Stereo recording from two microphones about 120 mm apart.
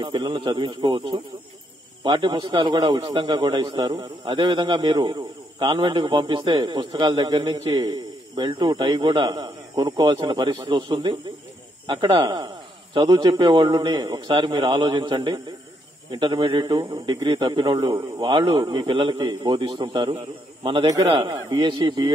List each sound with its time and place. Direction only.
0.0 s a man's voice: 40° right (ahead or behind)
17.9 s a man's voice: 15° right (ahead or behind)
18.2 s a man's voice: 45° right (ahead or behind)